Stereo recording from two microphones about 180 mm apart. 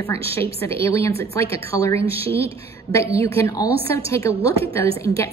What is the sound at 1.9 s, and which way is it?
Speech, 30° right (ahead or behind).